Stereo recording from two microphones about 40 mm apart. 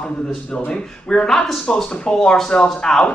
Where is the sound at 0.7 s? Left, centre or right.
Left.